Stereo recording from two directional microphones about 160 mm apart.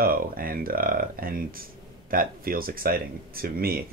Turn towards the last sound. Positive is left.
turn(degrees=-70)  # may be behind; listen again after turning